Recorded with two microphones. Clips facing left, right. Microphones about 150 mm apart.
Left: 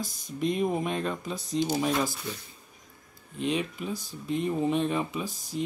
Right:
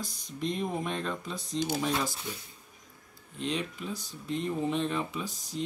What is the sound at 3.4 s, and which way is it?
Speech, 10° left (ahead or behind).